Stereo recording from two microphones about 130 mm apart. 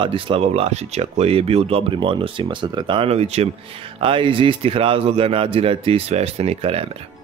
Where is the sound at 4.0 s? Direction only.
40° right (ahead or behind).